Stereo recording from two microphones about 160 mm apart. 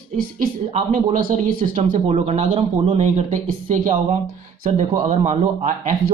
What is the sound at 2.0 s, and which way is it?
Speech, 40° right (ahead or behind).